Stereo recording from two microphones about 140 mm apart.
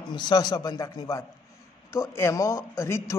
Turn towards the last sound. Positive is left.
turn(degrees=20)  # may be behind; listen again after turning